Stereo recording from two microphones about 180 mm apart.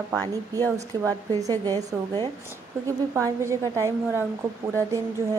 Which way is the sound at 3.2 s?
15° right (ahead or behind).